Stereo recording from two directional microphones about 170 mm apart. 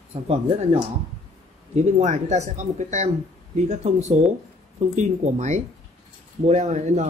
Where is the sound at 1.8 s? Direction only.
45° right (ahead or behind).